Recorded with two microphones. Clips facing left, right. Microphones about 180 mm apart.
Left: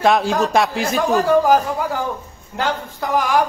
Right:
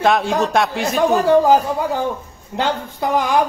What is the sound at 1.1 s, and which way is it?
A woman's voice, 25° right (ahead or behind).